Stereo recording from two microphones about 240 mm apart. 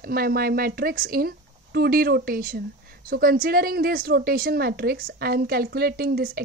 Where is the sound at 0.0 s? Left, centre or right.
Right.